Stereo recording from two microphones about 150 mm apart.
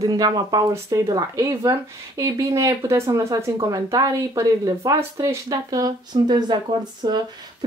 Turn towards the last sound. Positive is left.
turn(degrees=-30)  # may be behind; listen again after turning